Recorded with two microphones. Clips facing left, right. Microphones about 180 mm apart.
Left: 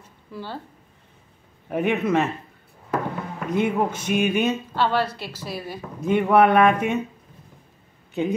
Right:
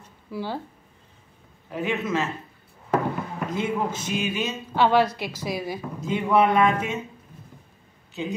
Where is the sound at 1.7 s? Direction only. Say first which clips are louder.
Left 5 dB; 60° left (ahead or behind).